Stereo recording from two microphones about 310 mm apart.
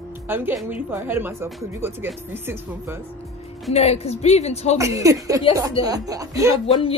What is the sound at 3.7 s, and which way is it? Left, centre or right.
Speech, centre.